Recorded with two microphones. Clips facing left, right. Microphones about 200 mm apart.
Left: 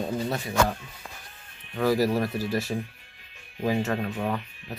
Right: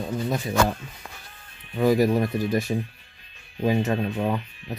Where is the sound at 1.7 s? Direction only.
20° right (ahead or behind).